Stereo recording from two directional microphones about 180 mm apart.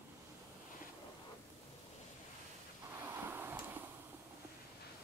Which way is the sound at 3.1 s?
10° right (ahead or behind).